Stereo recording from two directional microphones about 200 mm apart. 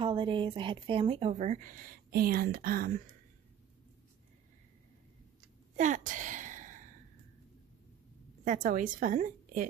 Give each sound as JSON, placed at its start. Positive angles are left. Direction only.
{"t": 0.0, "sound": "speech", "side_deg": -25}
{"t": 5.8, "sound": "a sound", "side_deg": -40}
{"t": 8.5, "sound": "speech", "side_deg": -40}